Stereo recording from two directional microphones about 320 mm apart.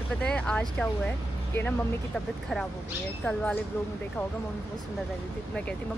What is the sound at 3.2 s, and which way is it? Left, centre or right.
Speech, centre.